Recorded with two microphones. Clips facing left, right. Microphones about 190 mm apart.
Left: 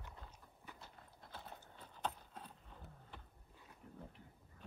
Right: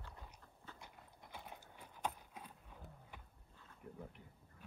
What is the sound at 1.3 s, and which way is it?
Clip-clop, 10° right (ahead or behind).